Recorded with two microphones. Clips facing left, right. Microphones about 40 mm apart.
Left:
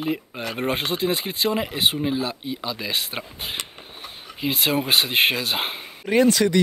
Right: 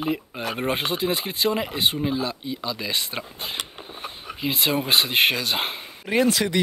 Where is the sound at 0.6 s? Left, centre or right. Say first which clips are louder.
Left 1 dB; centre.